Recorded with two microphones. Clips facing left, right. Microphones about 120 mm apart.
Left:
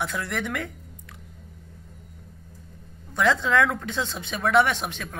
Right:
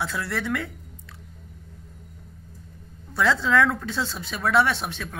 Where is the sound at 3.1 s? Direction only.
15° left (ahead or behind).